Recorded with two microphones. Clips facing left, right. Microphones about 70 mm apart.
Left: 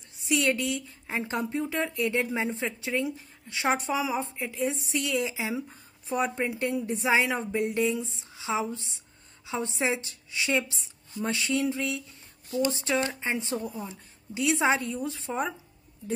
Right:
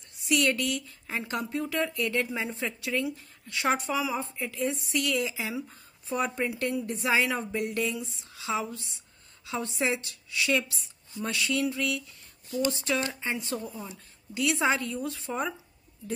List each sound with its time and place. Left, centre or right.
0.3 s a woman's voice: centre
2.0 s a woman's voice: centre